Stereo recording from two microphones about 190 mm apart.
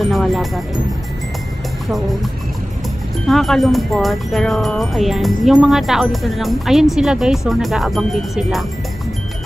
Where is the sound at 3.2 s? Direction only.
Centre (ahead or behind).